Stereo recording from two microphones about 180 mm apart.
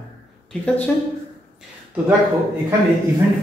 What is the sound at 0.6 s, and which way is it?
Speech, 5° left (ahead or behind).